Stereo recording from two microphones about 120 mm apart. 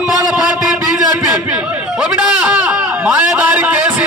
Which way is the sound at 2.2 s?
10° right (ahead or behind).